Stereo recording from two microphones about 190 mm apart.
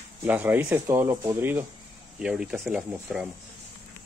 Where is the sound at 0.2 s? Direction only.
10° right (ahead or behind).